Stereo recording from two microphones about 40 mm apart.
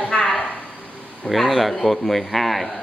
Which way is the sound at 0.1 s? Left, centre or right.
Centre.